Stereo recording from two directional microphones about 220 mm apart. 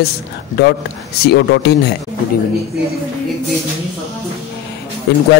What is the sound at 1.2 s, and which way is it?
Speech, 50° left (ahead or behind).